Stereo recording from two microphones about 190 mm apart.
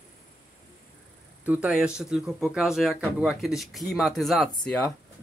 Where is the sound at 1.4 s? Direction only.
10° right (ahead or behind).